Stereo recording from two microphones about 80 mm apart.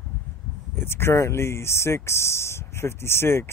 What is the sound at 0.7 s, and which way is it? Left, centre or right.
Speech, left.